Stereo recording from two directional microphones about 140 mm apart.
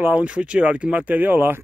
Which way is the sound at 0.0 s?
10° right (ahead or behind).